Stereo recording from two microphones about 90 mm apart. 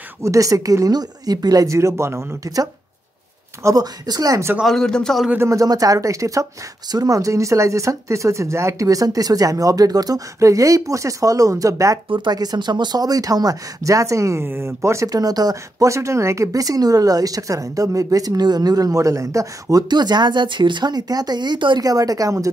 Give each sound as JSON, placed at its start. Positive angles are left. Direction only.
{"t": 0.2, "sound": "speech", "side_deg": -40}
{"t": 4.6, "sound": "a man's voice", "side_deg": 5}
{"t": 5.4, "sound": "speech", "side_deg": -40}
{"t": 12.1, "sound": "speech", "side_deg": -50}
{"t": 15.0, "sound": "speech", "side_deg": -45}
{"t": 19.9, "sound": "speech", "side_deg": -55}
{"t": 21.8, "sound": "speech", "side_deg": -45}